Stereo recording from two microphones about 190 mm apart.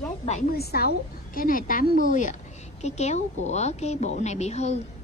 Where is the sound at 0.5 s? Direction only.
55° left (ahead or behind); by 4.7 s 35° left (ahead or behind).